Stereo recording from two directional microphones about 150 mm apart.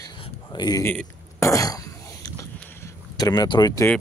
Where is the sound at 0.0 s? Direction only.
30° left (ahead or behind).